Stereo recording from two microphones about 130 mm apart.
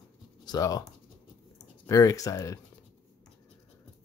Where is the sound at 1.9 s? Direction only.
25° left (ahead or behind).